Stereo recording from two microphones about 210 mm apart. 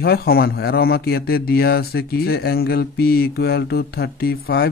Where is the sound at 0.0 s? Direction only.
50° left (ahead or behind).